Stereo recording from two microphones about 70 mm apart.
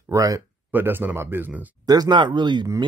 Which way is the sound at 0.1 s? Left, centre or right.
Right.